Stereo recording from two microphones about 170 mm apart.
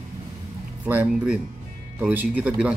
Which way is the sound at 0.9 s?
10° right (ahead or behind).